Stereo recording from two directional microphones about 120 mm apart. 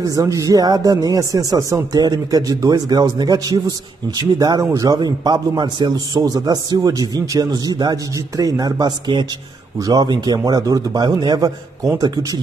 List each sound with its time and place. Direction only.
0.1 s a man's voice: 30° right (ahead or behind)